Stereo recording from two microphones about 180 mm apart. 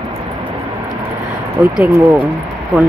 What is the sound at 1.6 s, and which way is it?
Speech, 10° right (ahead or behind).